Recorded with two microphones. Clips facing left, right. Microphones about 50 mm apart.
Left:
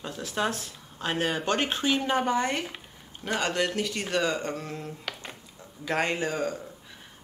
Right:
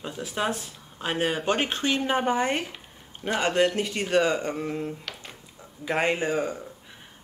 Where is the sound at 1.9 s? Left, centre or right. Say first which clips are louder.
Right 3 dB; centre.